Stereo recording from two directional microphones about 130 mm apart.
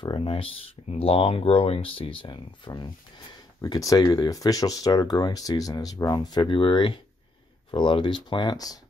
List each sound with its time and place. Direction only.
0.0 s speech: 40° left (ahead or behind)